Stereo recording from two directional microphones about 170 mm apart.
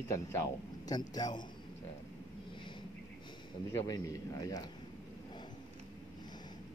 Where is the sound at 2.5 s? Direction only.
30° left (ahead or behind).